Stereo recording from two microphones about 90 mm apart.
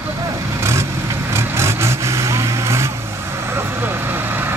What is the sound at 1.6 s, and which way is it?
Vehicle, 30° right (ahead or behind).